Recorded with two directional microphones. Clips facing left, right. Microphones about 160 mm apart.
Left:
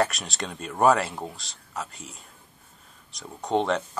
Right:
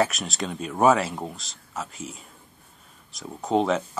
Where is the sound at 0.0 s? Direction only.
Centre (ahead or behind).